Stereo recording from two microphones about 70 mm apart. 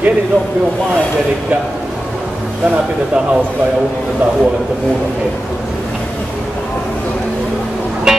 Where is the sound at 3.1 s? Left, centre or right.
Centre.